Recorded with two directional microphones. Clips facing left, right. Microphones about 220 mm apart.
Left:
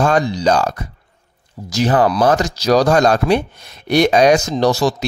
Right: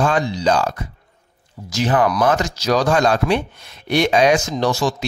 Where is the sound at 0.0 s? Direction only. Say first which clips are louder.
Left 3 dB; 40° left (ahead or behind).